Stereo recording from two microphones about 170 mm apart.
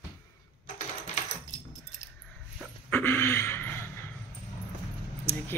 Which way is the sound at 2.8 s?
10° left (ahead or behind).